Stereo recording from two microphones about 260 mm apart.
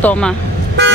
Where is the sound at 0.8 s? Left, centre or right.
Right.